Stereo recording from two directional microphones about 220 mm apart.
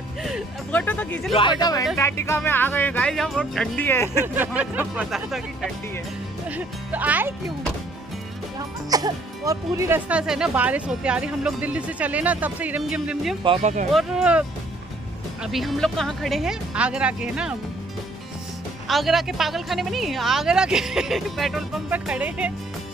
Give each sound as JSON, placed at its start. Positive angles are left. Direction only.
{"t": 0.2, "sound": "a sound", "side_deg": 5}
{"t": 1.3, "sound": "speech", "side_deg": 20}
{"t": 4.4, "sound": "speech", "side_deg": -10}
{"t": 8.5, "sound": "speech", "side_deg": -15}
{"t": 13.4, "sound": "speech", "side_deg": -25}
{"t": 13.9, "sound": "speech", "side_deg": -5}
{"t": 15.4, "sound": "speech", "side_deg": 0}
{"t": 18.9, "sound": "speech", "side_deg": 0}